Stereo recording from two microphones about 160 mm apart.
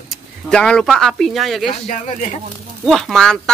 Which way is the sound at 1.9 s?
50° left (ahead or behind).